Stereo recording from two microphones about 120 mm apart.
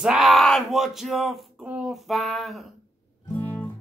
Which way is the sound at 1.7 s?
5° right (ahead or behind).